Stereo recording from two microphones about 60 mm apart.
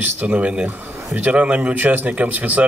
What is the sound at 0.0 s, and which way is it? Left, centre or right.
Speech, right.